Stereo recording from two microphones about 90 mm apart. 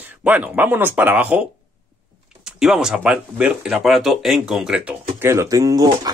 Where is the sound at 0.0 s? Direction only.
20° right (ahead or behind).